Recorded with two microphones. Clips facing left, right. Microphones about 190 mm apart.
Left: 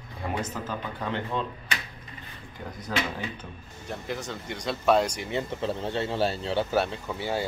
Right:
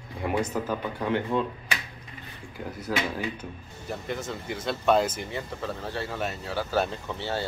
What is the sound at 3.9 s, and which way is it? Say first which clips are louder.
Speech: right 1 dB; centre (ahead or behind).